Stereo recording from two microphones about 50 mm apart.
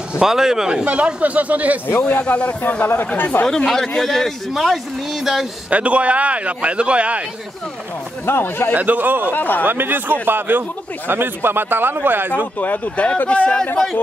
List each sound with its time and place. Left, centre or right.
0.2 s speech: centre
0.8 s speech: right
2.0 s speech: left
3.4 s a man's voice: centre
5.2 s speech: centre
5.7 s a man's voice: right
8.3 s speech: left
8.7 s speech: right
9.3 s speech: left
9.7 s speech: right
12.5 s speech: left